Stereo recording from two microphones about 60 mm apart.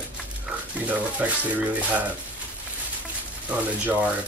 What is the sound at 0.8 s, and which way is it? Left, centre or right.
Speech, right.